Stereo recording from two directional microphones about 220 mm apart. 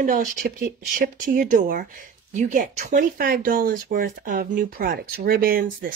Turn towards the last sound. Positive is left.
turn(degrees=-40)  # may be behind; listen again after turning